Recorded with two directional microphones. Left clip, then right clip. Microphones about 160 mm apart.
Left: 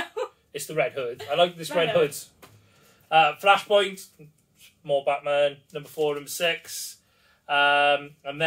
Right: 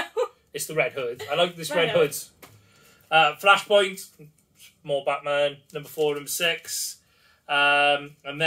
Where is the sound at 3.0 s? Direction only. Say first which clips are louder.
Even; 20° right (ahead or behind).